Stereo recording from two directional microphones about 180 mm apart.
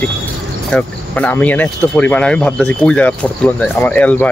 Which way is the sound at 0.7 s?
10° left (ahead or behind).